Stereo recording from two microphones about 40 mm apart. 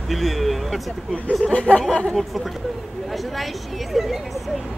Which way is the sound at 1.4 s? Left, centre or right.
Left.